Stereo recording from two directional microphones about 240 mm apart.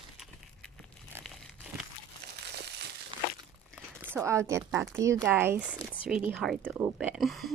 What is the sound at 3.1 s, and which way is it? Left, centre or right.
Crumpling, right.